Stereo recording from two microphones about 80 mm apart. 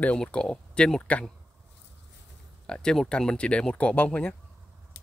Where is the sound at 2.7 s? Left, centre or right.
Centre.